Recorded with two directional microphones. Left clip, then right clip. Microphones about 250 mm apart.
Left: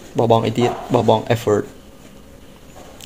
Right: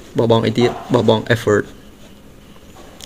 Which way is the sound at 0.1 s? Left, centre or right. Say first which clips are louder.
Right 1 dB; right.